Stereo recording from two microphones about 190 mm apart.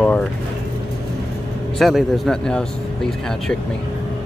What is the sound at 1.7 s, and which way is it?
Speech, centre (ahead or behind).